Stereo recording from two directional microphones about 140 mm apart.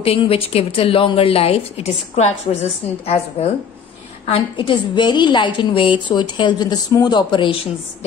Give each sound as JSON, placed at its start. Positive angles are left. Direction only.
{"t": 0.0, "sound": "a woman's voice", "side_deg": 45}
{"t": 4.3, "sound": "a woman's voice", "side_deg": 35}